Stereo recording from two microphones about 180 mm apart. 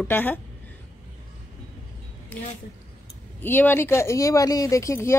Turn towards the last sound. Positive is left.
turn(degrees=15)  # may be behind; listen again after turning